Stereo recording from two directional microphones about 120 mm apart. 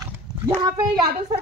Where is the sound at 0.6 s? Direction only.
30° right (ahead or behind).